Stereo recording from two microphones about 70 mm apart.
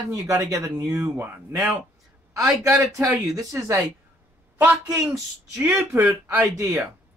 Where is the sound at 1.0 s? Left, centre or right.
Right.